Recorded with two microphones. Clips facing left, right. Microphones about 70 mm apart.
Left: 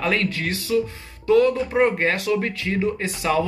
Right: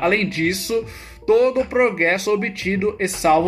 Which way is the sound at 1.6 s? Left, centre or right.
Centre.